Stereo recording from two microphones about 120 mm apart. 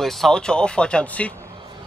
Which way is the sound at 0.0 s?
5° left (ahead or behind).